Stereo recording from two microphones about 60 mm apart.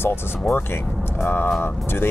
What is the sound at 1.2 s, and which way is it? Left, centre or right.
Speech, left.